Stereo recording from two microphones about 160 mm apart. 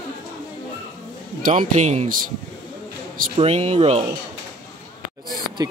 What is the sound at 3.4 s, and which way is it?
Speech, 40° right (ahead or behind).